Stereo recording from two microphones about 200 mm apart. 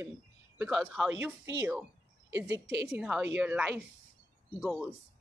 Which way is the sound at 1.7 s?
15° right (ahead or behind).